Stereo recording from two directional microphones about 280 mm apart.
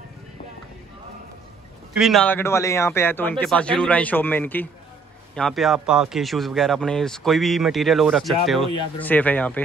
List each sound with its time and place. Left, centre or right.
2.0 s a man's voice: centre